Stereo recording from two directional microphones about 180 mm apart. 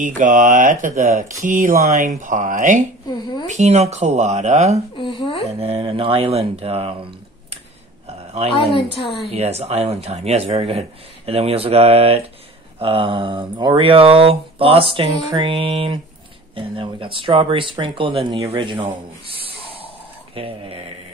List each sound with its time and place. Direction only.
0.0 s speech: 45° right (ahead or behind)
3.1 s speech: 25° left (ahead or behind)
3.4 s speech: 40° right (ahead or behind)
4.9 s a woman's voice: 30° left (ahead or behind)
5.6 s speech: 30° right (ahead or behind)
8.7 s a woman's voice: 30° left (ahead or behind)
9.3 s speech: 35° right (ahead or behind)
19.2 s a sound: 30° right (ahead or behind)
20.3 s speech: 30° right (ahead or behind)